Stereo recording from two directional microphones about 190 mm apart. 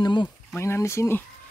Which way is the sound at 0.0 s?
25° left (ahead or behind).